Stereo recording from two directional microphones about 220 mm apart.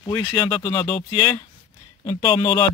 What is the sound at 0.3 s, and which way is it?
Speech, 10° left (ahead or behind).